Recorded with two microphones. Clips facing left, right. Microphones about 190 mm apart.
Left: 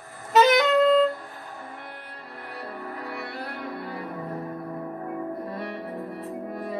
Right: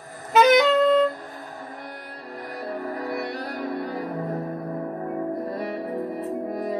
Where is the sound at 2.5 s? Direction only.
40° right (ahead or behind).